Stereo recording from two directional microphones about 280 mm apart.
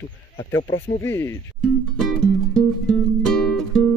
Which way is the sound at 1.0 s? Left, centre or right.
Centre.